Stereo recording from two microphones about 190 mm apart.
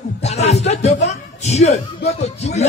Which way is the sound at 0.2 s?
35° left (ahead or behind).